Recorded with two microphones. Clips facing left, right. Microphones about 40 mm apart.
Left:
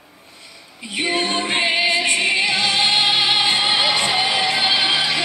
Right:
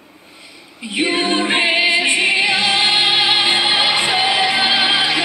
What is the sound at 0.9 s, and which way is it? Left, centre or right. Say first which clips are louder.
Music: right 4 dB; centre.